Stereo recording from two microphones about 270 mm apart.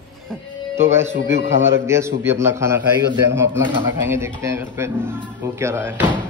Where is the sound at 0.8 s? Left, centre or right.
Centre.